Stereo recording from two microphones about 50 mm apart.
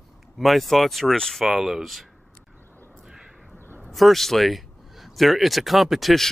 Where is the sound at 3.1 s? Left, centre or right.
Centre.